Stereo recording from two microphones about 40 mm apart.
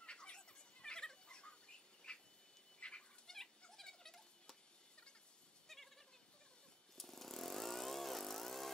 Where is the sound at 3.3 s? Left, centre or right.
Centre.